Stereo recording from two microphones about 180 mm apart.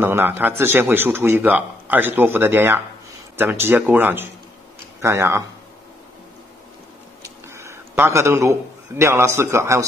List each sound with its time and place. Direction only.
0.0 s speech: 10° right (ahead or behind)
7.4 s a man's voice: 15° right (ahead or behind)